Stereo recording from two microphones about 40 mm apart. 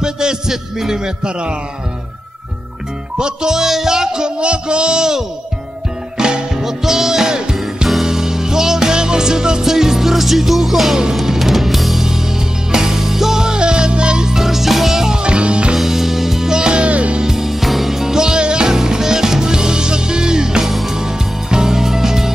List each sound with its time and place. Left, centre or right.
0.0 s music: centre
3.2 s music: centre
12.1 s music: centre
15.1 s music: right
15.7 s music: centre; by 17.2 s right
17.2 s music: centre
20.7 s music: centre
21.0 s music: centre